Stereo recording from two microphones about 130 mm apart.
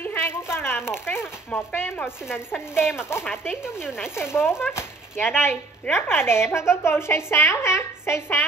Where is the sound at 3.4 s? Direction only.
5° right (ahead or behind).